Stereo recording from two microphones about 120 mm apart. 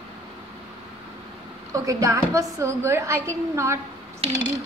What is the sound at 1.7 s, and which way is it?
A woman's voice, 25° right (ahead or behind).